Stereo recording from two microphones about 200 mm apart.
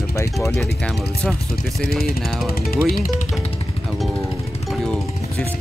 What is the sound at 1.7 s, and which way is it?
Speech, centre (ahead or behind).